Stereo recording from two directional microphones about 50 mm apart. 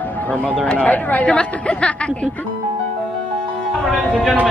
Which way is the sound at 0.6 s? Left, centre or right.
Left.